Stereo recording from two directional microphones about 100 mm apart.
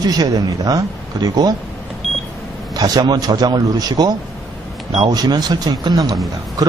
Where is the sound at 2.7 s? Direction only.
40° right (ahead or behind).